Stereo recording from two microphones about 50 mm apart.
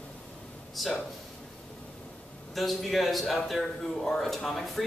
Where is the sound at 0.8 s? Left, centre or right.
Centre.